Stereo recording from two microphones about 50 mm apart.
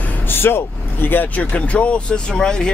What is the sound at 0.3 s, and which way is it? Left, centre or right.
Speech, left.